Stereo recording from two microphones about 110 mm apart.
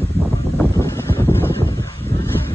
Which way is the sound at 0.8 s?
25° left (ahead or behind).